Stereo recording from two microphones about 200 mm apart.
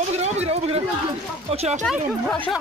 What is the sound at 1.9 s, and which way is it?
Speech, 5° left (ahead or behind).